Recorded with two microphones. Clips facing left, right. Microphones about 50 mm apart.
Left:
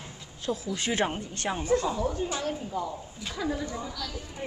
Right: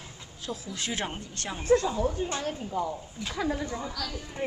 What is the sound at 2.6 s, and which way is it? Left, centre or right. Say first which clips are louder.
Speech: right 2 dB; centre.